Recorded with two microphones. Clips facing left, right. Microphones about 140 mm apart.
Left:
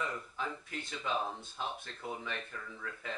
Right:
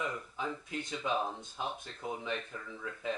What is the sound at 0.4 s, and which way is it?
Speech, 15° right (ahead or behind).